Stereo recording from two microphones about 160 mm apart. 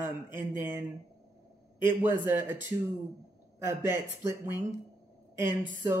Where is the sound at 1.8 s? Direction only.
15° right (ahead or behind).